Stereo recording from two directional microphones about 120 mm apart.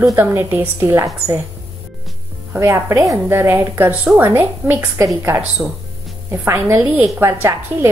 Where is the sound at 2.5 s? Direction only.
20° right (ahead or behind).